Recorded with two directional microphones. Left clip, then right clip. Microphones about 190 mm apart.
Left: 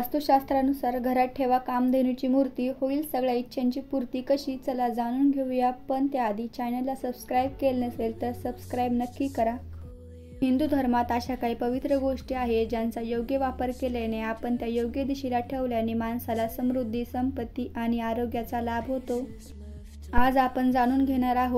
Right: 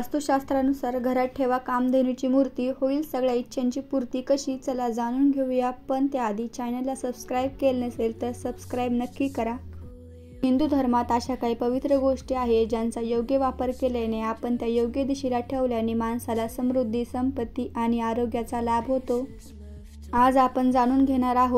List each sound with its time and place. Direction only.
0.0 s a woman's voice: 15° right (ahead or behind)
8.7 s a woman's voice: 15° right (ahead or behind)
9.0 s speech: centre (ahead or behind)
10.4 s a woman's voice: 15° right (ahead or behind)
20.1 s a woman's voice: 15° right (ahead or behind)